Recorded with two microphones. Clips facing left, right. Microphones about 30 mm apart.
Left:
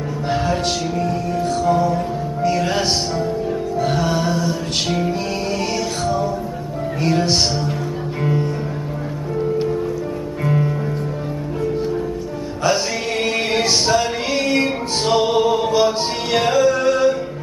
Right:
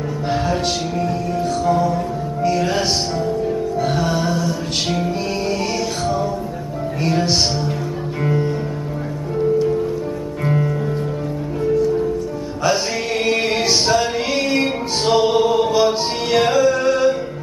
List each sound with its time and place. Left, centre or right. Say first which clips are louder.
0.3 s music: even; centre
7.0 s music: even; centre
10.4 s music: even; centre
13.2 s music: right 1 dB; centre